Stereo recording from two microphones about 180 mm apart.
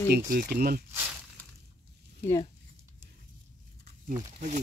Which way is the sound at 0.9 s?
10° right (ahead or behind).